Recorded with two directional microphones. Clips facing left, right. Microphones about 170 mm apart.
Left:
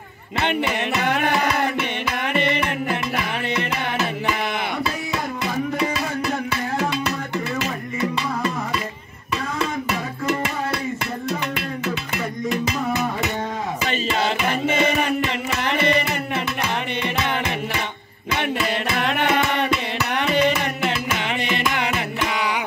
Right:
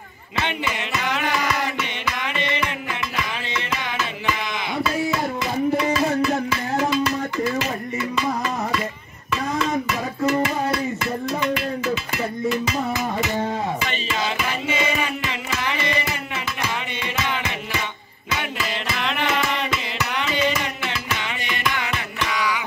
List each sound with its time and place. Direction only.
1.0 s music: 55° left (ahead or behind)
14.1 s music: 55° left (ahead or behind)
18.9 s music: 50° left (ahead or behind)
22.3 s music: 55° left (ahead or behind)